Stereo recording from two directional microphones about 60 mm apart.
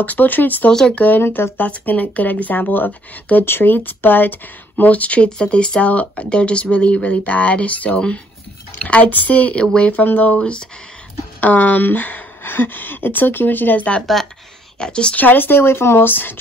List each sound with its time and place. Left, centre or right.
0.0 s speech: left
0.7 s a woman's voice: centre
1.2 s speech: left
1.6 s speech: left
11.4 s a woman's voice: left
15.1 s speech: left